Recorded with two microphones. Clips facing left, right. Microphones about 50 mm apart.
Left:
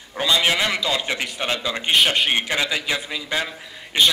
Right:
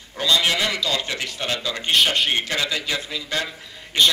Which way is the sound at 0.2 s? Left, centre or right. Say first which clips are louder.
Left 1 dB; centre.